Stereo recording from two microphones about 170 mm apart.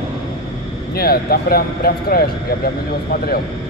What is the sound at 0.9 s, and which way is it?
Speech, 65° left (ahead or behind).